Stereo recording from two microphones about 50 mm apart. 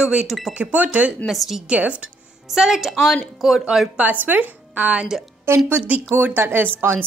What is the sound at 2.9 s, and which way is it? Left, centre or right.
A woman's voice, centre.